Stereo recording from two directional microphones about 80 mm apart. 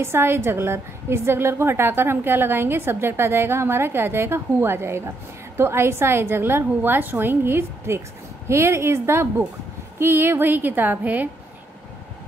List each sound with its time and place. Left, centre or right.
0.0 s a woman's voice: right